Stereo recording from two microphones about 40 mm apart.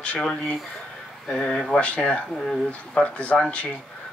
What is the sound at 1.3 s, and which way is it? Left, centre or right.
Speech, left.